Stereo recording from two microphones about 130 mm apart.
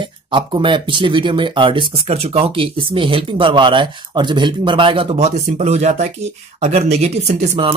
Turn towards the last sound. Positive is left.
turn(degrees=-60)  # may be behind; listen again after turning